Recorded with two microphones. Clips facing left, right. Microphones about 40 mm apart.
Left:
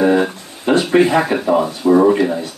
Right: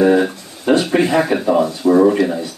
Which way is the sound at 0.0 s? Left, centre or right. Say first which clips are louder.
Right 1 dB; centre.